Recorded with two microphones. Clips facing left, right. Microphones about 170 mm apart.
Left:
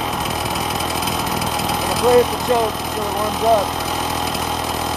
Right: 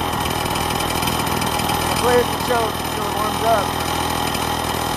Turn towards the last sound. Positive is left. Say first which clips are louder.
# even
turn(degrees=0)  # may be behind; listen again after turning